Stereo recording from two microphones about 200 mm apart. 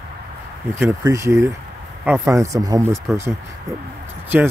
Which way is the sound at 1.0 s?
15° right (ahead or behind).